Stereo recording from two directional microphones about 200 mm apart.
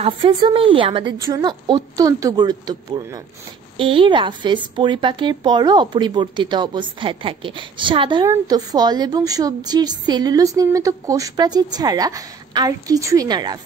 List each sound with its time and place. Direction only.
0.0 s speech: 25° right (ahead or behind)